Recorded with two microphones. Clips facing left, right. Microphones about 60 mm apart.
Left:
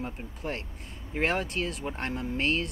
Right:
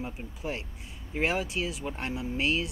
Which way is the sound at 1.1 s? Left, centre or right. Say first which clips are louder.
Left 1 dB; left.